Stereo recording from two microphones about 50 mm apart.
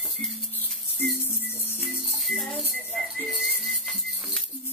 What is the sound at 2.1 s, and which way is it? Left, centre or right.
Music, centre.